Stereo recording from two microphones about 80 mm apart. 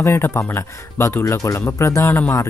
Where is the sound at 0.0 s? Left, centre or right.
Left.